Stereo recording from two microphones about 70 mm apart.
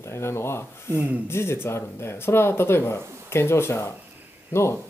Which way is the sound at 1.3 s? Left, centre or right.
Left.